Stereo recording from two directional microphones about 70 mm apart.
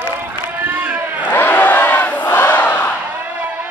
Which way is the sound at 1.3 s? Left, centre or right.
Left.